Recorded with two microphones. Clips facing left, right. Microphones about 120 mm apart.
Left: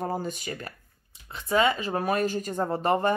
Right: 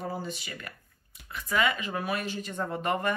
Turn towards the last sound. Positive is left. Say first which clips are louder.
# left 5 dB
turn(degrees=35)  # may be behind; listen again after turning